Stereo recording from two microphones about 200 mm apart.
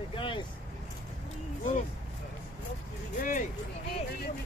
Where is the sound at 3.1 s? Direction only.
40° left (ahead or behind).